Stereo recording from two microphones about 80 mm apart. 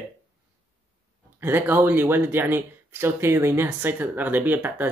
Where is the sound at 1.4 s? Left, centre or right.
Right.